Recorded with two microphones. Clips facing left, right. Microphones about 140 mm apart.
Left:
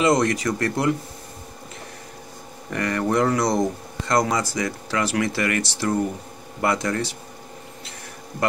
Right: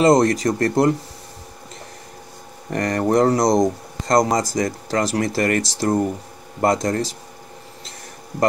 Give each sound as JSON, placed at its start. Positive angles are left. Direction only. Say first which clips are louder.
{"t": 0.0, "sound": "speech", "louder": "right 5 dB", "side_deg": -40}
{"t": 2.7, "sound": "speech", "louder": "right 4 dB", "side_deg": -40}